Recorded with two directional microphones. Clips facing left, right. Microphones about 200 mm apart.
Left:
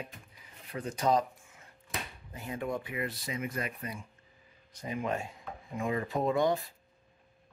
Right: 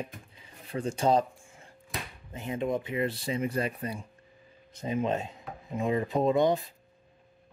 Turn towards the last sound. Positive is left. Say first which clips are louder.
# right 4 dB
turn(degrees=-20)  # may be behind; listen again after turning